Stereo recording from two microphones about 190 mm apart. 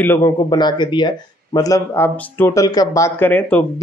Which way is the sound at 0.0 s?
10° left (ahead or behind).